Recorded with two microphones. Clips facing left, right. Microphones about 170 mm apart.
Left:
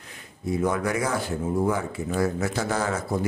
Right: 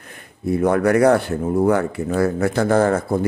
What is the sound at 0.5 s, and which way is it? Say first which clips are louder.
Speech: right 8 dB; 60° right (ahead or behind).